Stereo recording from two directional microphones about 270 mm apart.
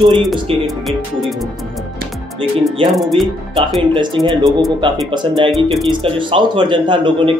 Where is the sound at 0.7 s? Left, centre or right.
Centre.